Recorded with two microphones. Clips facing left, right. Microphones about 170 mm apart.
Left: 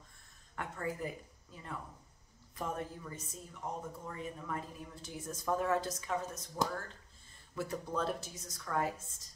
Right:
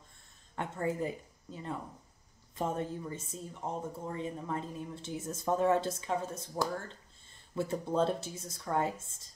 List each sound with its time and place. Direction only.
0.6 s speech: 25° right (ahead or behind)